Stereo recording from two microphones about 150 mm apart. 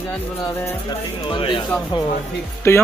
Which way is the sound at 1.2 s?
35° left (ahead or behind).